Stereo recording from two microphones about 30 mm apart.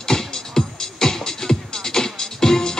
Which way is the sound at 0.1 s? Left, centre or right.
Left.